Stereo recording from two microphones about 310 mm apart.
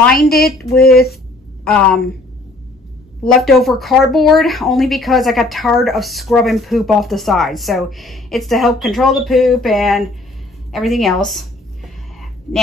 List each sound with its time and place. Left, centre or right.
0.7 s speech: left
1.6 s a woman's voice: centre
3.3 s speech: centre